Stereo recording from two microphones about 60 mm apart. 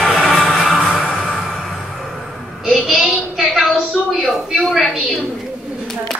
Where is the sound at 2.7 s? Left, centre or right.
Centre.